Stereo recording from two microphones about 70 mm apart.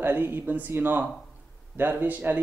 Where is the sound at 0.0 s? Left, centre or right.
Right.